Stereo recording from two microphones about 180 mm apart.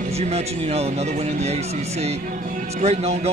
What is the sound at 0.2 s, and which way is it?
Speech, 35° right (ahead or behind).